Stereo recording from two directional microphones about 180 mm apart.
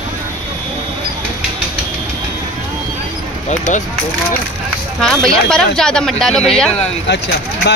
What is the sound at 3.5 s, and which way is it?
Speech, 40° left (ahead or behind).